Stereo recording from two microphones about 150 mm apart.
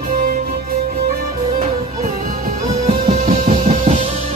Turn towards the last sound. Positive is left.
turn(degrees=-45)  # may be behind; listen again after turning